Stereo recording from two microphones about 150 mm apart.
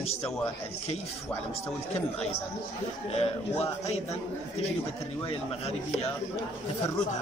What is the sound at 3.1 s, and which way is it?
A man's voice, 45° left (ahead or behind).